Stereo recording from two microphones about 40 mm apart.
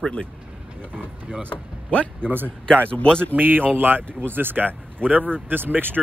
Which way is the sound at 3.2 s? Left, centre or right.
Right.